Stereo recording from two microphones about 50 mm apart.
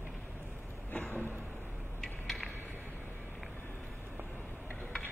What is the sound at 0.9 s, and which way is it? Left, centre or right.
Vehicle, left.